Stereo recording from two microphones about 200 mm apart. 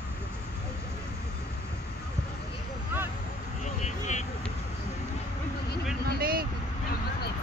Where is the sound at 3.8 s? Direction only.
35° left (ahead or behind).